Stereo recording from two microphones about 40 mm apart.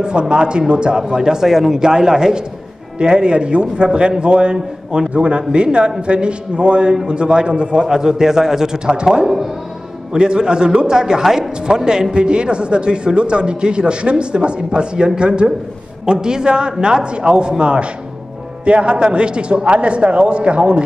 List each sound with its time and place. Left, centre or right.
0.0 s a man's voice: right
10.1 s a man's voice: right